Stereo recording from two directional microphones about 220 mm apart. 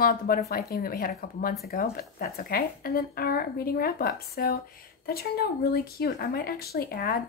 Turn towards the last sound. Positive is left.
turn(degrees=45)  # may be behind; listen again after turning